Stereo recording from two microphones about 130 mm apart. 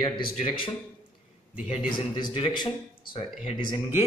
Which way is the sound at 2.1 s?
40° left (ahead or behind).